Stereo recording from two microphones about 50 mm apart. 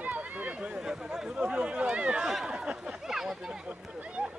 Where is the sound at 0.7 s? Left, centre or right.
Centre.